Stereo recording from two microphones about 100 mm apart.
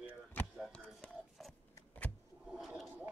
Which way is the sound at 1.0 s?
Centre (ahead or behind).